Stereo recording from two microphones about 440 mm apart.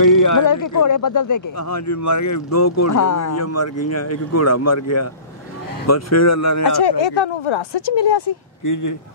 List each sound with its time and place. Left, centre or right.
0.0 s speech: left
6.8 s speech: left
8.6 s speech: left